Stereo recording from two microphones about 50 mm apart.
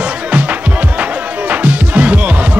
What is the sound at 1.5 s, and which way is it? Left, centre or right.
Music, right.